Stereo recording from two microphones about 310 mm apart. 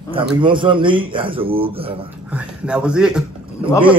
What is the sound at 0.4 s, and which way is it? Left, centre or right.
A man's voice, centre.